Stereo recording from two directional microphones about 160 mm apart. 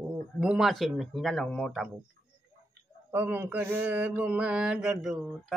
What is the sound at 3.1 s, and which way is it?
Mantra, 10° right (ahead or behind).